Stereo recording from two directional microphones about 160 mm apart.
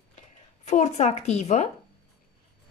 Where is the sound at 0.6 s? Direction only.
45° left (ahead or behind).